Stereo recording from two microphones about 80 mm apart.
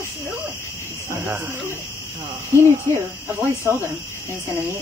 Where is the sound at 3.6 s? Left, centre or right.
Right.